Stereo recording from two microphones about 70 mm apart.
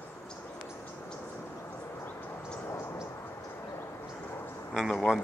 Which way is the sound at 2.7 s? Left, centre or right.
Left.